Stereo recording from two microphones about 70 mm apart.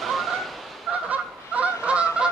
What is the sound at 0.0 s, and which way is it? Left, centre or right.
Fowl, centre.